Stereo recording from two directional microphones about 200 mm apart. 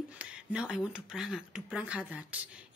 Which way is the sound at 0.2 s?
5° right (ahead or behind).